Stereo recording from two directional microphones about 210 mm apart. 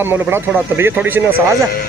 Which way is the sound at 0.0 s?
10° right (ahead or behind).